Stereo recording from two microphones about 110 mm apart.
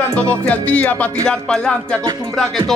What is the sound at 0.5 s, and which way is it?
Speech, 15° left (ahead or behind).